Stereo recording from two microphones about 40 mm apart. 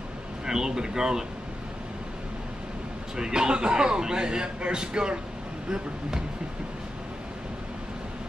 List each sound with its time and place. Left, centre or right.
0.5 s speech: centre
3.2 s speech: centre